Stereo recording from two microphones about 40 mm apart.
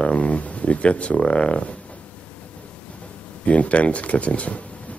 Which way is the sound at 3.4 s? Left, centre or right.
Left.